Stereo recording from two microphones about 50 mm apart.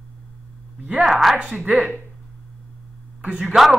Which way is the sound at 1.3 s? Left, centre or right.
Right.